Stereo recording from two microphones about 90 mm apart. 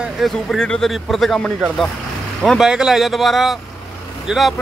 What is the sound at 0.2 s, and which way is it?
Speech, 5° left (ahead or behind).